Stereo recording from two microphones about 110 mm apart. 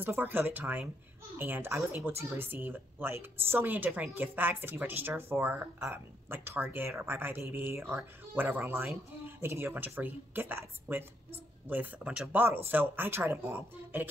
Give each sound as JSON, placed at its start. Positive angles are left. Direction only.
{"t": 0.0, "sound": "a woman's voice", "side_deg": -20}